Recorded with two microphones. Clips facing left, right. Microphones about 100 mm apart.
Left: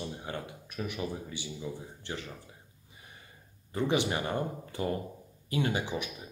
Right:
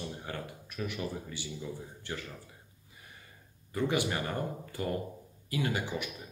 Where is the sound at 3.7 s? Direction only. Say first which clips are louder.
Left 2 dB; 25° left (ahead or behind).